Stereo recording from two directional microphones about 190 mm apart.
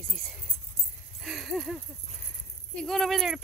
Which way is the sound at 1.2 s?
Centre (ahead or behind).